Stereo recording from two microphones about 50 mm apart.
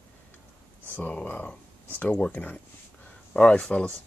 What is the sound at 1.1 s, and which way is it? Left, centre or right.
Speech, left.